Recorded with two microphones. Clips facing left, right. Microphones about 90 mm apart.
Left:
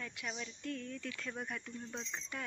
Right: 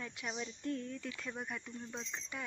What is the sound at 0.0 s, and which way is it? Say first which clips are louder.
Speech: right 2 dB; 20° right (ahead or behind).